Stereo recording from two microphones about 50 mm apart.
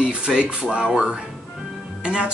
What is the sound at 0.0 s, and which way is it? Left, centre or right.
Speech, centre.